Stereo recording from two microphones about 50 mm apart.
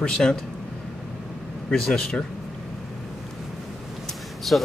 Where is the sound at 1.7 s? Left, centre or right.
Centre.